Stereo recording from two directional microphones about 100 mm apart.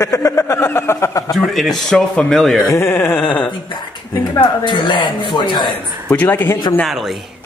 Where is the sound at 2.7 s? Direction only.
20° left (ahead or behind).